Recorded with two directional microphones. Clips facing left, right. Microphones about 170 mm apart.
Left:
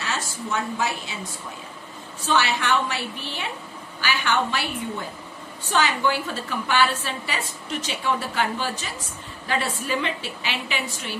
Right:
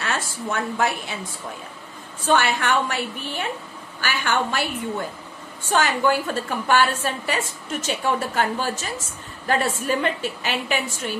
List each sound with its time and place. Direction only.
0.0 s a woman's voice: 55° right (ahead or behind)
2.2 s a woman's voice: 50° right (ahead or behind)
5.7 s a woman's voice: 50° right (ahead or behind)